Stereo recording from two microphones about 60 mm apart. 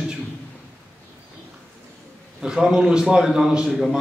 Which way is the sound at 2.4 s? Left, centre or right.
Centre.